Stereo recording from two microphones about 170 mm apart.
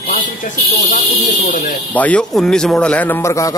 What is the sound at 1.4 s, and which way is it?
Speech, 55° left (ahead or behind).